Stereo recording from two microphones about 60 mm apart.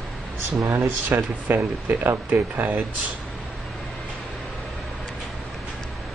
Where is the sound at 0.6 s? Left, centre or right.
Right.